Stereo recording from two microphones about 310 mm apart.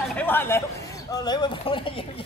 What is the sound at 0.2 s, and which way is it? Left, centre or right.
Speech, centre.